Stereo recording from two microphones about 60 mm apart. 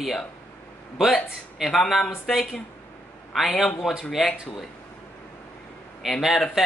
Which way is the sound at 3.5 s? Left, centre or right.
Centre.